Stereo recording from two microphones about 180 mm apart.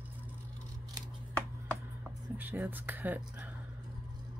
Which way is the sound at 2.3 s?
10° right (ahead or behind).